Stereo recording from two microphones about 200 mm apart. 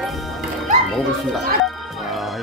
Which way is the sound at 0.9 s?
Centre (ahead or behind).